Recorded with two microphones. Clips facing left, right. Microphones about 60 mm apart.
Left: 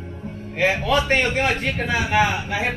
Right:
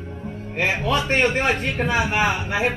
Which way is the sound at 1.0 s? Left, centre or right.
Right.